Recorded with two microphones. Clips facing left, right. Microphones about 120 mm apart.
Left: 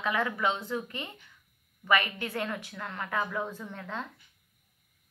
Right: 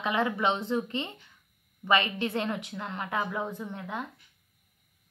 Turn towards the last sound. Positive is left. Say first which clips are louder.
# right 2 dB
turn(degrees=-15)  # may be behind; listen again after turning